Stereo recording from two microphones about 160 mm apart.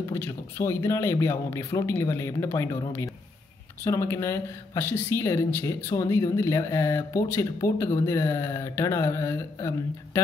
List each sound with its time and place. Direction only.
0.1 s speech: 15° left (ahead or behind)